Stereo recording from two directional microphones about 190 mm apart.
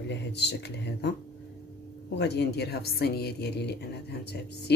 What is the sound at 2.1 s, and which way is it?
Speech, 65° left (ahead or behind).